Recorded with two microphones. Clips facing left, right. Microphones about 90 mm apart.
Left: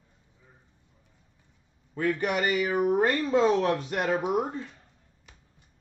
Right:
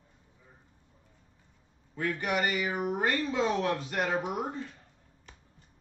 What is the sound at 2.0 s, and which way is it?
Speech, 45° left (ahead or behind).